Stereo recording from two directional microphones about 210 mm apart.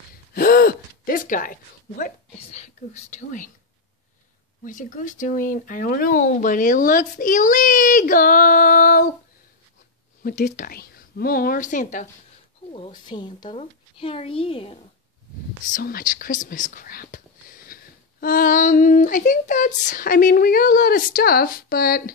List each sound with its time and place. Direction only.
0.3 s gasp: 40° left (ahead or behind)
2.0 s speech: 35° left (ahead or behind)
4.6 s speech: 40° left (ahead or behind)
10.2 s speech: 50° left (ahead or behind)
12.7 s a woman's voice: 25° left (ahead or behind)
15.6 s speech: 45° left (ahead or behind)